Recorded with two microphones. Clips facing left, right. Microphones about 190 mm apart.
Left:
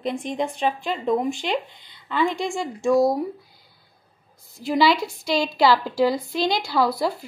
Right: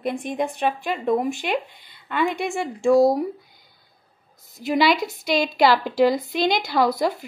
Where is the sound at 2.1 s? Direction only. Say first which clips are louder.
Even; 55° right (ahead or behind).